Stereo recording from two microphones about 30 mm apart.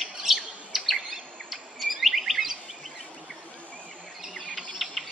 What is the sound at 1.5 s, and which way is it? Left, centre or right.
Chirp, centre.